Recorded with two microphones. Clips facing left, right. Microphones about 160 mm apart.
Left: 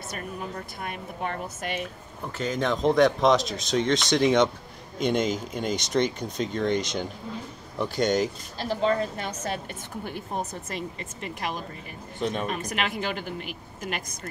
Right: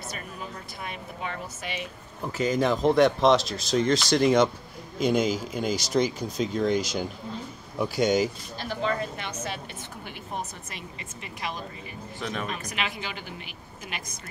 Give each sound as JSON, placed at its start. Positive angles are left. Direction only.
{"t": 0.1, "sound": "speech", "side_deg": 50}
{"t": 2.2, "sound": "speech", "side_deg": -10}
{"t": 8.5, "sound": "a woman's voice", "side_deg": 35}
{"t": 10.7, "sound": "speech", "side_deg": 45}
{"t": 12.2, "sound": "speech", "side_deg": 25}
{"t": 12.4, "sound": "speech", "side_deg": 50}